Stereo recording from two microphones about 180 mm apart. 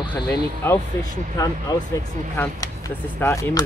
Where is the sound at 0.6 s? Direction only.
15° left (ahead or behind).